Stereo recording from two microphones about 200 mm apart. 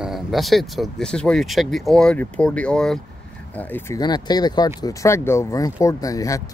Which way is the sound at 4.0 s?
20° left (ahead or behind).